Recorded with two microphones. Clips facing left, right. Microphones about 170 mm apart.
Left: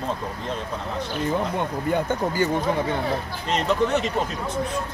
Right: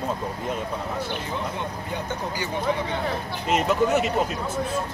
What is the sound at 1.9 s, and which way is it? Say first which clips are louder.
Speech: left 9 dB; 55° left (ahead or behind).